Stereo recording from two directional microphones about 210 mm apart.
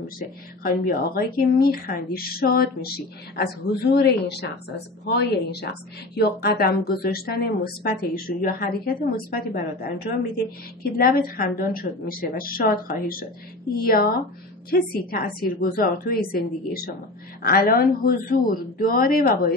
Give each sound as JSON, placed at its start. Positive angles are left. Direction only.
{"t": 0.7, "sound": "a woman's voice", "side_deg": 45}